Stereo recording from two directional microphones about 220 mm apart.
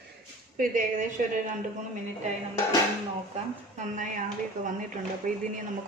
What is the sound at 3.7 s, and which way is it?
Speech, 35° right (ahead or behind).